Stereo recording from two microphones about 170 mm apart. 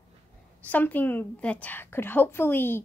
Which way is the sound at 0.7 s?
10° left (ahead or behind).